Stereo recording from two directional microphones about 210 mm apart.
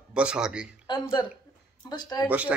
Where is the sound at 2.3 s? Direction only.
5° right (ahead or behind).